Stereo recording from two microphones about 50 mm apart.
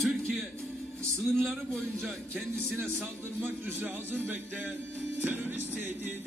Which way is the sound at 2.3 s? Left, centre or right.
Right.